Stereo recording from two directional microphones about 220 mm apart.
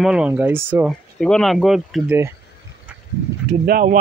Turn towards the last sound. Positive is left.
turn(degrees=-40)  # may be behind; listen again after turning